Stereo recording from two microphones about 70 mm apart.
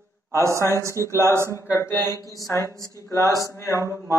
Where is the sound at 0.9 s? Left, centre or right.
Left.